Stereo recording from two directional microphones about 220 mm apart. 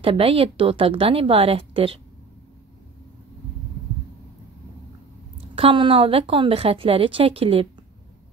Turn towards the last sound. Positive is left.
turn(degrees=-25)  # may be behind; listen again after turning